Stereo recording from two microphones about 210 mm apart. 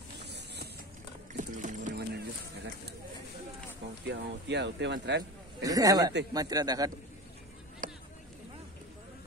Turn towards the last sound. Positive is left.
turn(degrees=-40)  # may be behind; listen again after turning